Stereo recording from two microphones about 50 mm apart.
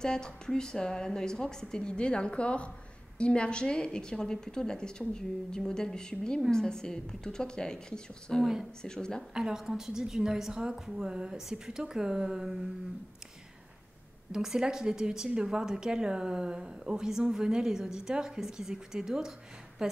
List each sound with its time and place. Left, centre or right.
0.0 s a woman's voice: centre
9.3 s a woman's voice: centre
14.3 s a woman's voice: centre